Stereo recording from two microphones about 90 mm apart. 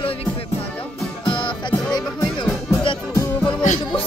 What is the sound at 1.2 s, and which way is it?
Music, 65° left (ahead or behind).